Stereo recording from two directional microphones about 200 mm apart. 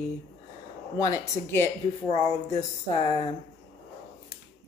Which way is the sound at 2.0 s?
30° left (ahead or behind).